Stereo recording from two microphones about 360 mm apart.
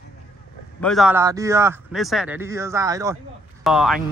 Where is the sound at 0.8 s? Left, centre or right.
Centre.